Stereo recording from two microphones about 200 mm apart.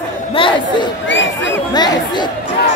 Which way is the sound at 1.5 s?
20° left (ahead or behind).